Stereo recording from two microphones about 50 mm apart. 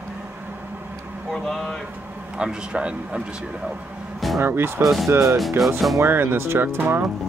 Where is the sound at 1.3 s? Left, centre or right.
Centre.